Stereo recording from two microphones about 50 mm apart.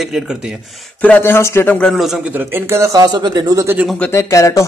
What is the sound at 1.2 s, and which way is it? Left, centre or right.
Speech, left.